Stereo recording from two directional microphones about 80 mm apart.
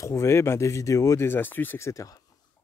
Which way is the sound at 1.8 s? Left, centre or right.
Left.